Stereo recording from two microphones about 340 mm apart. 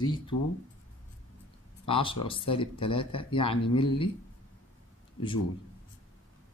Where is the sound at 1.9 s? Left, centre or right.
Centre.